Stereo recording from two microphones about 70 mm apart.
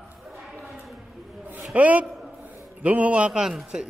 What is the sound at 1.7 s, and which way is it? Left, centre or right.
A man's voice, right.